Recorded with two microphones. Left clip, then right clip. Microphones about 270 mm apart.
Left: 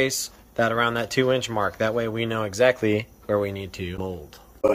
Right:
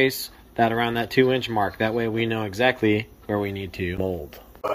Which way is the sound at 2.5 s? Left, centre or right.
Centre.